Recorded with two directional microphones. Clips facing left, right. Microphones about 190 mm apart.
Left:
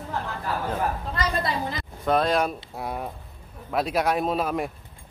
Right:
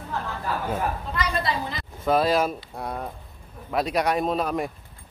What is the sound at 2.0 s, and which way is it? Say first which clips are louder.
Speech: right 1 dB; 5° right (ahead or behind).